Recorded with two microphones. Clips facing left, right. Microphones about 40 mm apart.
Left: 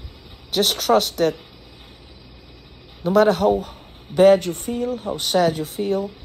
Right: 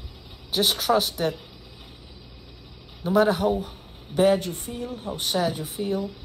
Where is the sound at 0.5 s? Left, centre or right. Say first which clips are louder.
Left 4 dB; left.